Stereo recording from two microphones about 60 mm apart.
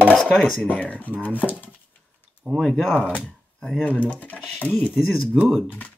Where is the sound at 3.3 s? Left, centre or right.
Centre.